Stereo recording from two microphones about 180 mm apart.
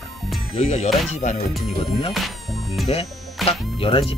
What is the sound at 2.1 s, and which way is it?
Insect, centre (ahead or behind).